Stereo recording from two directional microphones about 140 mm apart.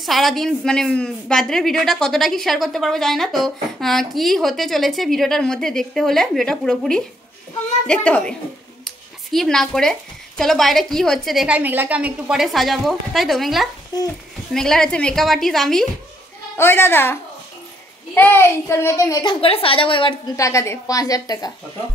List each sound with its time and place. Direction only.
0.0 s a child's voice: centre (ahead or behind)
16.5 s a child's voice: 15° left (ahead or behind)
19.2 s a woman's voice: 40° left (ahead or behind)
20.3 s a child's voice: 20° left (ahead or behind)